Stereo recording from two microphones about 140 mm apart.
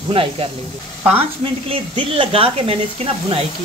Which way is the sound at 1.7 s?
40° right (ahead or behind).